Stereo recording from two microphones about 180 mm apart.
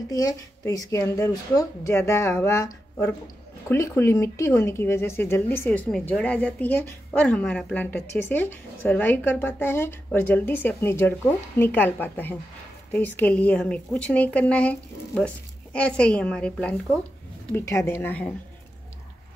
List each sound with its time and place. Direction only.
0.1 s speech: 20° left (ahead or behind)